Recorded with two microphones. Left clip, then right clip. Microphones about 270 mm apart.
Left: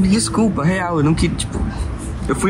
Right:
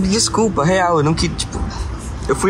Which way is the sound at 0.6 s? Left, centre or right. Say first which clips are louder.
Right 4 dB; centre.